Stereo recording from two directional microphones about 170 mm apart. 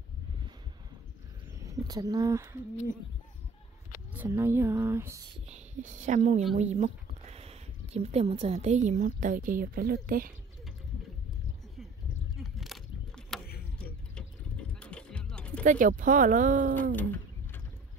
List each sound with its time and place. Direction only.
1.6 s speech: 20° right (ahead or behind)
4.1 s speech: 15° right (ahead or behind)
5.5 s speech: 45° right (ahead or behind)
12.4 s a sound: centre (ahead or behind)
15.6 s speech: 50° right (ahead or behind)
16.9 s bird: 10° left (ahead or behind)